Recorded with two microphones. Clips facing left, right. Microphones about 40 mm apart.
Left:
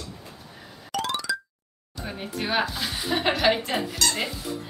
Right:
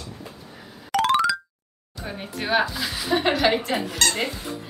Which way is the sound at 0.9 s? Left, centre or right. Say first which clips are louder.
Right 9 dB; right.